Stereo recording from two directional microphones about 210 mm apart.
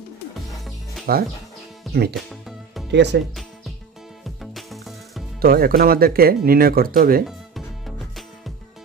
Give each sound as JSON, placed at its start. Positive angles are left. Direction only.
{"t": 1.1, "sound": "speech", "side_deg": -45}
{"t": 2.9, "sound": "speech", "side_deg": -55}
{"t": 4.2, "sound": "music", "side_deg": 0}
{"t": 5.4, "sound": "speech", "side_deg": -45}